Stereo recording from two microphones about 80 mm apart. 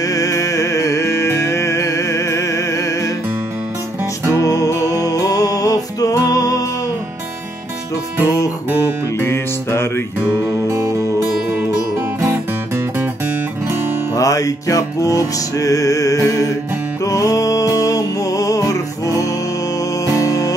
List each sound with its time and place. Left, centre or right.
0.0 s music: left
4.4 s music: left
9.2 s music: left
10.3 s music: right
12.3 s music: right
14.1 s music: left